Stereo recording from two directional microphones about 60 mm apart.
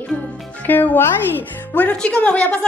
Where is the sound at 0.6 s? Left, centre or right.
Left.